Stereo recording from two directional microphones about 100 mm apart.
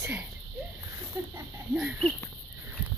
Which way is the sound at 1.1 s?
30° right (ahead or behind).